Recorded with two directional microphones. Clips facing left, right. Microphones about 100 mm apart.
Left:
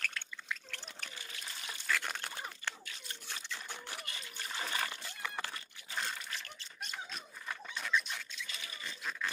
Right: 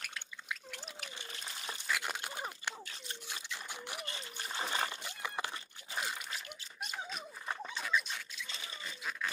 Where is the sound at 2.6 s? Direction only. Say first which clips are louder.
Left 3 dB; 15° right (ahead or behind).